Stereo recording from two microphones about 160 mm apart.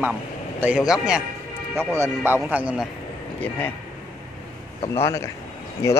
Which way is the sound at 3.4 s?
10° left (ahead or behind).